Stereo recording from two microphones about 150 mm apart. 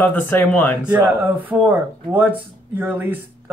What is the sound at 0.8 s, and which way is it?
Speech, 10° right (ahead or behind).